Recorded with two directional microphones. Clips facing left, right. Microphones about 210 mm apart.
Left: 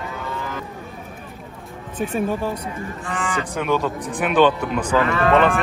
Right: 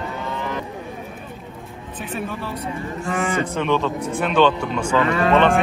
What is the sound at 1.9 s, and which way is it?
Speech, 45° left (ahead or behind).